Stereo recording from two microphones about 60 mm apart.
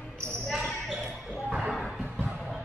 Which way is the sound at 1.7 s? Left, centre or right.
Centre.